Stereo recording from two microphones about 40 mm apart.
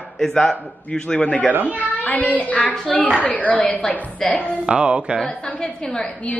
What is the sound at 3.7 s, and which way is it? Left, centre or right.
Speech, left.